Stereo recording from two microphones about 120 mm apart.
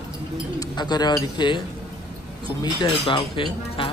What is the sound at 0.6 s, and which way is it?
A woman's voice, 35° left (ahead or behind).